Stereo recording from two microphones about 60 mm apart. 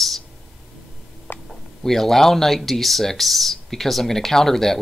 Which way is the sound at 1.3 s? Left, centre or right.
Left.